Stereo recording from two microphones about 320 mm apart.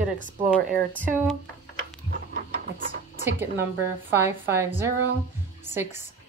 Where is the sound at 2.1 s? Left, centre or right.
Right.